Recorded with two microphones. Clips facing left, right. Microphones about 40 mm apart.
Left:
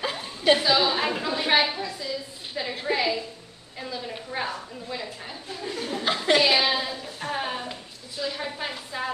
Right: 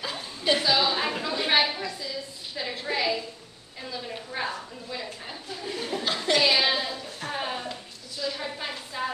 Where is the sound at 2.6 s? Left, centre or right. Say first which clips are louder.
Left 2 dB; centre.